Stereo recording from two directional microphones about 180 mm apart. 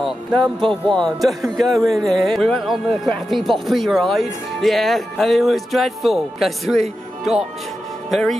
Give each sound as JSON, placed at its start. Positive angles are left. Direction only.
{"t": 0.4, "sound": "speech", "side_deg": -25}
{"t": 0.9, "sound": "speech", "side_deg": 0}
{"t": 8.1, "sound": "speech", "side_deg": 0}